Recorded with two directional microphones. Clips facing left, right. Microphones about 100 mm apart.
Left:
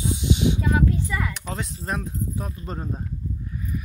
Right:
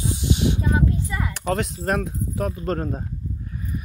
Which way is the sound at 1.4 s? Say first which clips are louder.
Right 8 dB; 75° right (ahead or behind).